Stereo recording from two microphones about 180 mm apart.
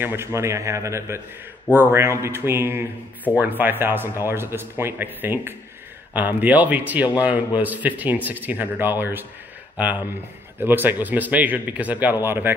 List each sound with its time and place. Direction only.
0.0 s a man's voice: 15° right (ahead or behind)